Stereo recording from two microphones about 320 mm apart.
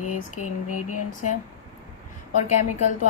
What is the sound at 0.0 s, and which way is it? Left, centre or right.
Speech, left.